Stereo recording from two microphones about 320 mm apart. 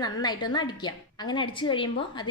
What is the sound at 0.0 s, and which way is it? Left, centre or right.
A woman's voice, centre.